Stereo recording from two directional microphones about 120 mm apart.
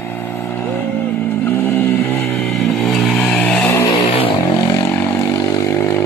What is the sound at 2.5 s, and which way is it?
Vehicle, centre (ahead or behind).